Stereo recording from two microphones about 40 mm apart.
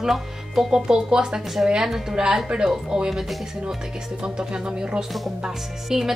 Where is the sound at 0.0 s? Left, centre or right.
Centre.